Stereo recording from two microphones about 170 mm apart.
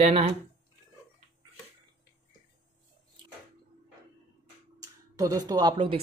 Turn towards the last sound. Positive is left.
turn(degrees=-25)  # may be behind; listen again after turning